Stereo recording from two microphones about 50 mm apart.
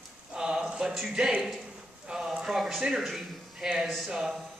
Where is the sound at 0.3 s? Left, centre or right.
Centre.